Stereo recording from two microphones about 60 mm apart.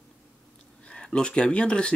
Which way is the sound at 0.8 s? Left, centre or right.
Centre.